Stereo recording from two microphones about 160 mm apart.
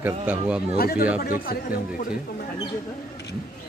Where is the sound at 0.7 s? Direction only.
70° left (ahead or behind).